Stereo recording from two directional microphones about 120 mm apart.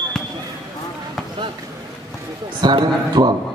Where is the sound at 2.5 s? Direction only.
35° right (ahead or behind).